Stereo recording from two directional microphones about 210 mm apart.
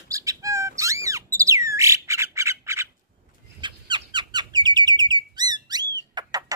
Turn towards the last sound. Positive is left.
turn(degrees=-20)  # may be behind; listen again after turning